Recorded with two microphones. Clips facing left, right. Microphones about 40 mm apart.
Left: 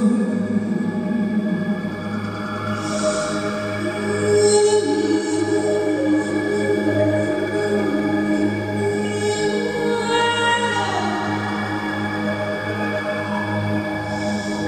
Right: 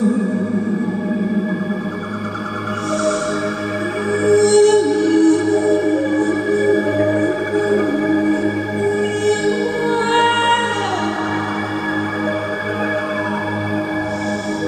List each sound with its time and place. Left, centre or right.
4.3 s music: right
7.8 s music: right
9.8 s music: right